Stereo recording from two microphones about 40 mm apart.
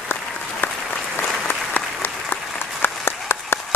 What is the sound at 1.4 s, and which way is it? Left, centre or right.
Applause, left.